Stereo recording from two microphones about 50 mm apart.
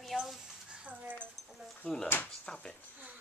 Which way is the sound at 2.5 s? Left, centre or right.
Centre.